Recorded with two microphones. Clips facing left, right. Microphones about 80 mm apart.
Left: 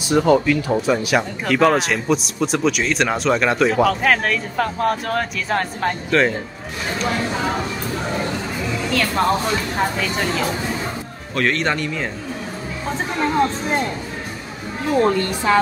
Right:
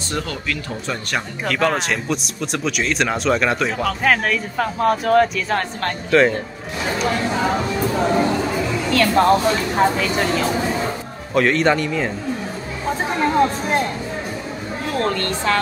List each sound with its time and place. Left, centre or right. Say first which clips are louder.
0.1 s a woman's voice: left 11 dB; centre
8.9 s speech: right 5 dB; centre
14.9 s a woman's voice: left 5 dB; centre